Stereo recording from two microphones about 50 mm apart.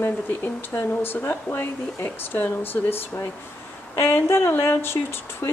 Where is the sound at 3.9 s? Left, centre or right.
Left.